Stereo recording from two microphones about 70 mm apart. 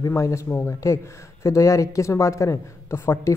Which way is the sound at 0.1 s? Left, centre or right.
Left.